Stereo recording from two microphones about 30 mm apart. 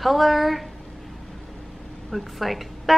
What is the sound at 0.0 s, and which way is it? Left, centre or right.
Speech, centre.